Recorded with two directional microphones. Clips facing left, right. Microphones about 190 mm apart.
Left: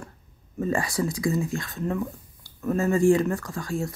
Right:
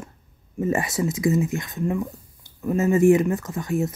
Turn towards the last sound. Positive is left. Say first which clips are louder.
# right 5 dB
turn(degrees=-20)  # may be behind; listen again after turning